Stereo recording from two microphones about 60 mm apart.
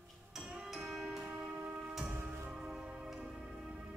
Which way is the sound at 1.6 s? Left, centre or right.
Centre.